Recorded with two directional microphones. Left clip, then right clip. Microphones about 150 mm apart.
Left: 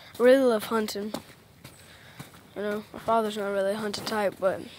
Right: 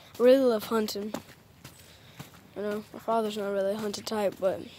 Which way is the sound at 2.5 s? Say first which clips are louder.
Left 2 dB; centre (ahead or behind).